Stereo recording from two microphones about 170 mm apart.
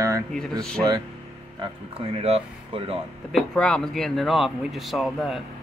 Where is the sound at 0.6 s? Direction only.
5° left (ahead or behind).